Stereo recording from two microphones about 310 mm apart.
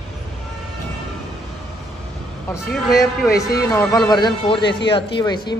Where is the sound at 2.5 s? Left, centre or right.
Centre.